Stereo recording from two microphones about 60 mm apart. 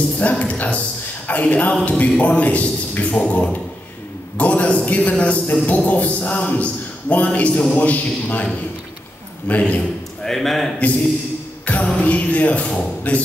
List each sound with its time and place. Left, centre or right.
0.2 s a man's voice: left
9.5 s a man's voice: left
10.2 s a man's voice: centre
11.6 s music: left
11.9 s a man's voice: left